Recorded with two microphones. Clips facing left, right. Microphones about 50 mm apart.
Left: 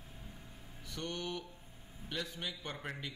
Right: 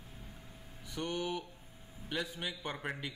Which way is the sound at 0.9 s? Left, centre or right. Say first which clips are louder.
Right 4 dB; centre.